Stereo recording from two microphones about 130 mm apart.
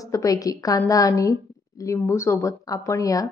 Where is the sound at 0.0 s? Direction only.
25° left (ahead or behind).